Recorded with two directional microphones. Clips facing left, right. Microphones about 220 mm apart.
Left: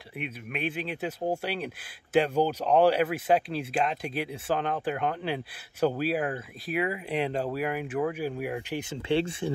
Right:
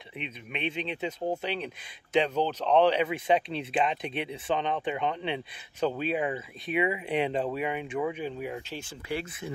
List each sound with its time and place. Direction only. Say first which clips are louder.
0.2 s speech: left 2 dB; 5° left (ahead or behind)
9.1 s speech: left 8 dB; 30° left (ahead or behind)